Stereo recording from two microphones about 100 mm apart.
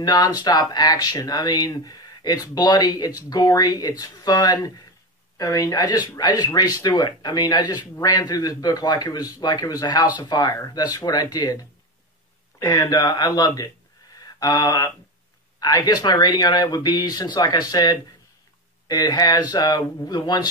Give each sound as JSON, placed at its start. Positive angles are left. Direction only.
{"t": 0.0, "sound": "speech", "side_deg": 40}
{"t": 14.1, "sound": "a sound", "side_deg": 40}
{"t": 15.6, "sound": "speech", "side_deg": 40}